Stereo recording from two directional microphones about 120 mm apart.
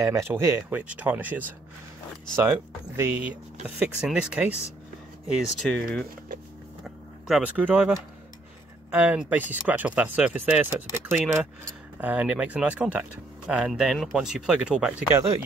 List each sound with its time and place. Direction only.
0.0 s speech: 25° right (ahead or behind); by 5.8 s centre (ahead or behind)
7.2 s speech: 10° right (ahead or behind)
8.9 s speech: 15° right (ahead or behind)